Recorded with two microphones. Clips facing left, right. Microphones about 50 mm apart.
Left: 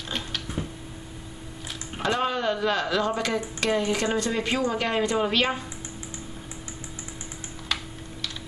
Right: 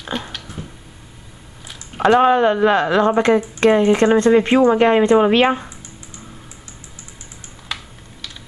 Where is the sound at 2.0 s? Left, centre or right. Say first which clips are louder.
Right 13 dB; right.